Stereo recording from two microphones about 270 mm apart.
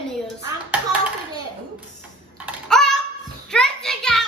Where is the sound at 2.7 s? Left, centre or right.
Centre.